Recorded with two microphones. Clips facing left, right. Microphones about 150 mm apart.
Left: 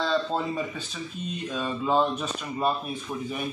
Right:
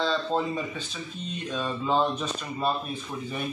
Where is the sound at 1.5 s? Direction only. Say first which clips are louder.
Left 1 dB; 10° left (ahead or behind).